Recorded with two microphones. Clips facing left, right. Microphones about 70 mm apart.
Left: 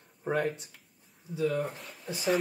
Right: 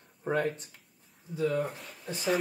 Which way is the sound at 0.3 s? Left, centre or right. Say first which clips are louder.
Even; centre.